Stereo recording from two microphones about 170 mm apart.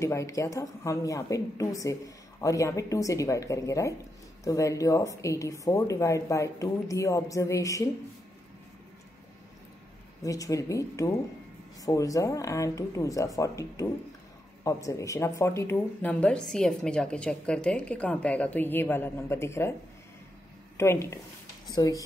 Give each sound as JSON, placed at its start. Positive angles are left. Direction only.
{"t": 0.0, "sound": "speech", "side_deg": 15}
{"t": 10.2, "sound": "speech", "side_deg": 20}
{"t": 20.7, "sound": "speech", "side_deg": 15}